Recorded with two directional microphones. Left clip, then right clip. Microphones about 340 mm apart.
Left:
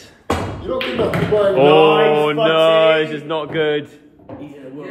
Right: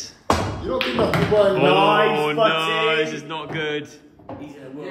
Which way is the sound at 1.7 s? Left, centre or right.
Centre.